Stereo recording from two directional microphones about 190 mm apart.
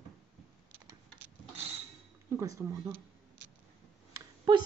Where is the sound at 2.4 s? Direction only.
15° right (ahead or behind).